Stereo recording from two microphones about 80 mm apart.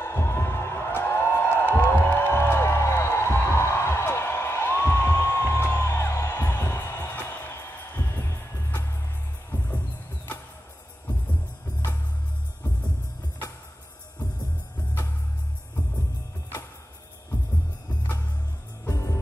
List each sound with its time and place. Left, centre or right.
0.0 s music: left
18.9 s music: left